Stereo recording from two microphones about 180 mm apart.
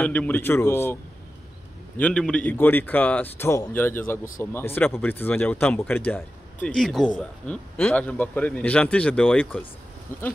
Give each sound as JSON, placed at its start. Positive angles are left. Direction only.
{"t": 0.0, "sound": "a man's voice", "side_deg": 10}
{"t": 2.0, "sound": "a man's voice", "side_deg": 5}